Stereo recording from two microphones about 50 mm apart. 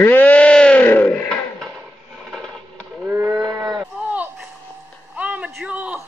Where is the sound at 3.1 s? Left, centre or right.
Right.